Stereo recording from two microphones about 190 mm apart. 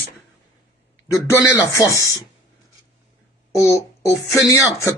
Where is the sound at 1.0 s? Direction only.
15° left (ahead or behind).